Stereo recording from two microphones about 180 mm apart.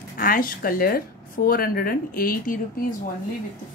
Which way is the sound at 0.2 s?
50° left (ahead or behind).